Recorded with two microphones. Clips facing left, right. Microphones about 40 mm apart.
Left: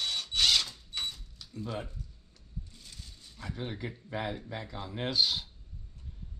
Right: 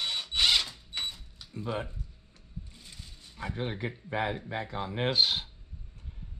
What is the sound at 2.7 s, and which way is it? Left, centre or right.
Speech, centre.